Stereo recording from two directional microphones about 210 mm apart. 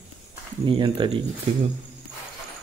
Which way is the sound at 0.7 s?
20° right (ahead or behind).